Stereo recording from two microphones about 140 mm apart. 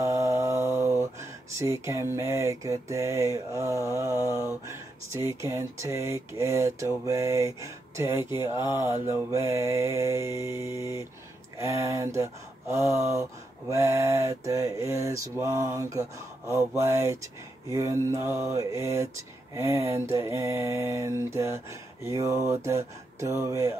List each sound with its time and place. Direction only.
0.0 s speech: 20° right (ahead or behind)
7.1 s mantra: 20° right (ahead or behind)
11.5 s speech: 20° right (ahead or behind)
13.1 s mantra: 20° right (ahead or behind)